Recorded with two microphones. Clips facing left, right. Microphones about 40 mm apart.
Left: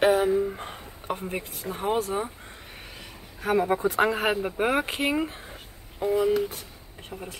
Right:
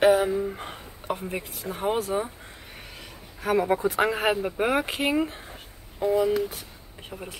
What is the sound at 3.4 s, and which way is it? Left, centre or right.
Speech, centre.